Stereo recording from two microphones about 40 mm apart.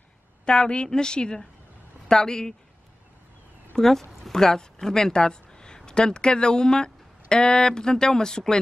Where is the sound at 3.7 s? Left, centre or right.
Centre.